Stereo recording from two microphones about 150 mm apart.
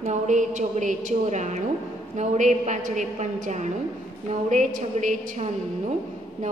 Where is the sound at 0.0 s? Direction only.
55° right (ahead or behind).